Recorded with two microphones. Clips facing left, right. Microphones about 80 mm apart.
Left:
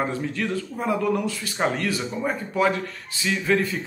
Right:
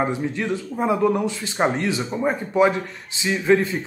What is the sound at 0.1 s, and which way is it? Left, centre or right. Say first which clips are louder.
Speech: right 2 dB; centre.